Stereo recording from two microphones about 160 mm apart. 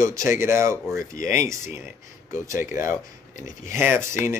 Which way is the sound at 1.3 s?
20° right (ahead or behind).